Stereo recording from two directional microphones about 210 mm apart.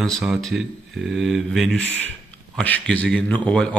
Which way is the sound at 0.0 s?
Centre (ahead or behind).